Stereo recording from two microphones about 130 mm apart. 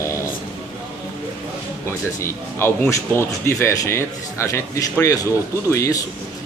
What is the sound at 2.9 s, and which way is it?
Speech, 20° left (ahead or behind).